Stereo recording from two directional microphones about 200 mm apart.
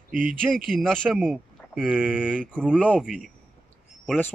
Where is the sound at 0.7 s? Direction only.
5° left (ahead or behind).